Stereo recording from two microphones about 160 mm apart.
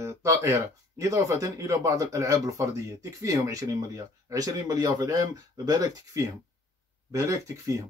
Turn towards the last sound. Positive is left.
turn(degrees=-20)  # may be behind; listen again after turning